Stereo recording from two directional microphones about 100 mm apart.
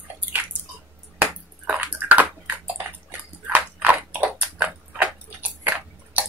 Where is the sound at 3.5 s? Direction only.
15° right (ahead or behind).